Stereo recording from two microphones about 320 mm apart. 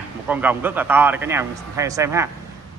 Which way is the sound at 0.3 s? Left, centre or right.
Centre.